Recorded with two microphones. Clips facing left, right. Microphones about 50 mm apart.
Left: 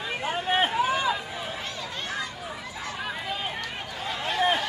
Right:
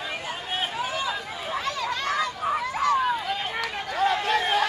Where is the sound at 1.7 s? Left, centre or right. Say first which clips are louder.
Right 6 dB; right.